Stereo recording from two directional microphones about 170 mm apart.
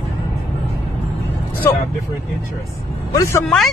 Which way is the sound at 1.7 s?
15° left (ahead or behind).